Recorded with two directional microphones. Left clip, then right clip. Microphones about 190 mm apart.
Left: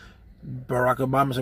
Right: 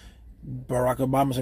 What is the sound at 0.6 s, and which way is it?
Speech, 5° left (ahead or behind).